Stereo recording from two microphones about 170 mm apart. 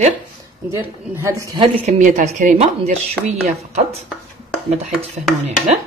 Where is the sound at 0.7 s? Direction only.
15° right (ahead or behind).